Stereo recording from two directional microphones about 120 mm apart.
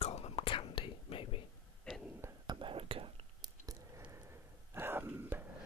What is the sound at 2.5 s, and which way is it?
Whispering, 45° right (ahead or behind).